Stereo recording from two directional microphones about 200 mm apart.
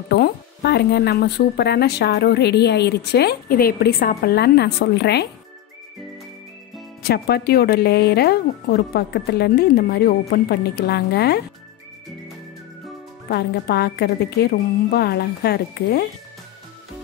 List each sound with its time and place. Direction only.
0.1 s speech: 55° left (ahead or behind)
7.0 s speech: 55° left (ahead or behind)
13.3 s speech: 55° left (ahead or behind)